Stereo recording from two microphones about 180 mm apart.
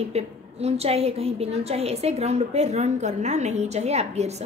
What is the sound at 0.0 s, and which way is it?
A woman's voice, 35° right (ahead or behind).